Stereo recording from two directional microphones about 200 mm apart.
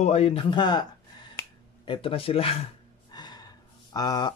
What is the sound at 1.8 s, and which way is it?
Speech, 25° left (ahead or behind).